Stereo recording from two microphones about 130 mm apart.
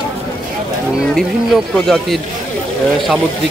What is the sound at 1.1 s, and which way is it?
Speech, centre (ahead or behind).